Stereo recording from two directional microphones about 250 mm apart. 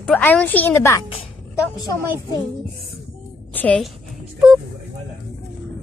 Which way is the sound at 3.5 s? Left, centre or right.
Centre.